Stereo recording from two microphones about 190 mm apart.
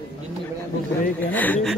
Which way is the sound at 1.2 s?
10° left (ahead or behind).